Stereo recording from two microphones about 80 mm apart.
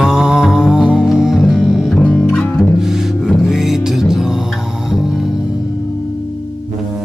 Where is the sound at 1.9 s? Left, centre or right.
Centre.